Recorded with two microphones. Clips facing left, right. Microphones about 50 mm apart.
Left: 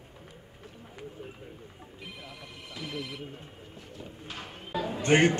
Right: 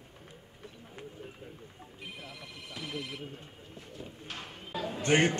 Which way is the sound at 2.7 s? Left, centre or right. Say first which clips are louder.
Left 1 dB; centre.